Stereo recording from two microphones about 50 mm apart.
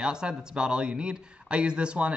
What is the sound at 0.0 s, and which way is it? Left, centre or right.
Speech, centre.